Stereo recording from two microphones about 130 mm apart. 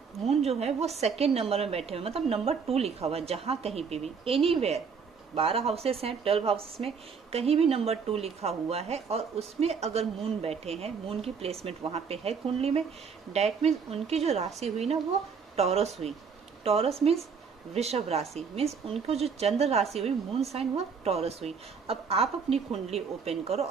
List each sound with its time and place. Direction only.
0.3 s a woman's voice: 55° right (ahead or behind)